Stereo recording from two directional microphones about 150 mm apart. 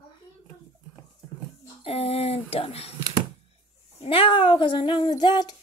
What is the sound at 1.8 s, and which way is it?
Speech, 40° left (ahead or behind).